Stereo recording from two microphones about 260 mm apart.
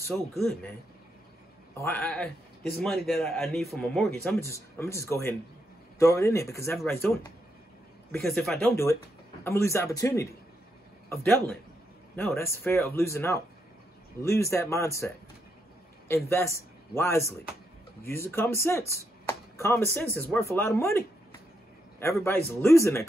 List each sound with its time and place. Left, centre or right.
0.4 s a man's voice: centre
1.8 s a man's voice: centre
16.3 s speech: centre
22.2 s speech: centre